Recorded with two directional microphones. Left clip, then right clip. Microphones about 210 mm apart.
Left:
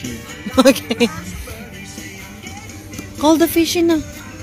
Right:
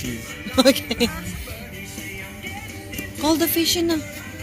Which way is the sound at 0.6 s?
35° left (ahead or behind).